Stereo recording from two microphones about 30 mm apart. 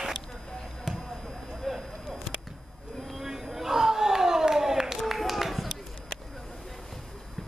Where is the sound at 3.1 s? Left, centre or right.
Centre.